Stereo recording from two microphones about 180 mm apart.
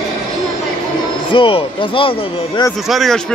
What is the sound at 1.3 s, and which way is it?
Speech, 30° left (ahead or behind).